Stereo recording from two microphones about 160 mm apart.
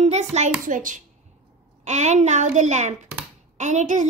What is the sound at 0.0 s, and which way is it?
A child's voice, 45° right (ahead or behind).